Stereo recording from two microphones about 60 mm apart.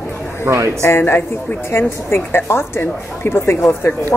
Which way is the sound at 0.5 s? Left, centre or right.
Right.